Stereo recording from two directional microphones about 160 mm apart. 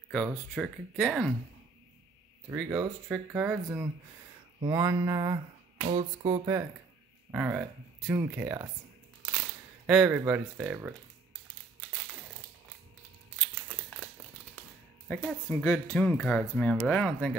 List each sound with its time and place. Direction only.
0.1 s speech: centre (ahead or behind)
2.5 s speech: 10° right (ahead or behind)
4.6 s a sound: 25° right (ahead or behind)
7.2 s speech: 10° right (ahead or behind)
9.8 s speech: 10° right (ahead or behind)
13.4 s crumpling: centre (ahead or behind)
15.2 s speech: 5° left (ahead or behind)